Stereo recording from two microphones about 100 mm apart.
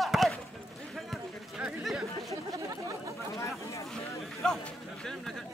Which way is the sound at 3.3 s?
30° left (ahead or behind).